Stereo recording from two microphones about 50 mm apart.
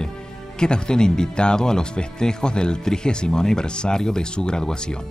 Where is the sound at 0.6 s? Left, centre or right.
Centre.